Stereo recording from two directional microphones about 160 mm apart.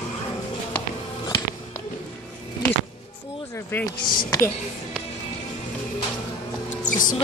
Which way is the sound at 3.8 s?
20° left (ahead or behind).